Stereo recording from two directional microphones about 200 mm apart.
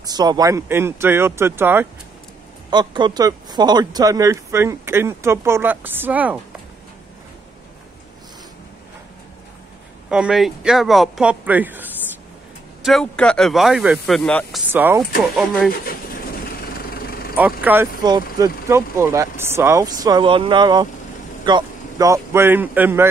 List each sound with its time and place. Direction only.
0.0 s speech: 20° right (ahead or behind)
2.7 s speech: 20° right (ahead or behind)
10.0 s speech: 5° right (ahead or behind)
12.8 s speech: centre (ahead or behind)
14.7 s speech: 10° right (ahead or behind)
15.8 s vehicle: 45° left (ahead or behind)
17.4 s speech: 10° right (ahead or behind)